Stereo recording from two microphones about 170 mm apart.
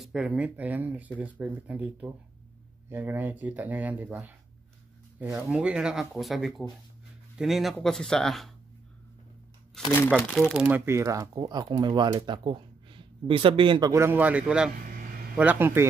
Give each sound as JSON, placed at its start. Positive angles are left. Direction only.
{"t": 0.0, "sound": "speech", "side_deg": -5}
{"t": 9.8, "sound": "speech", "side_deg": 5}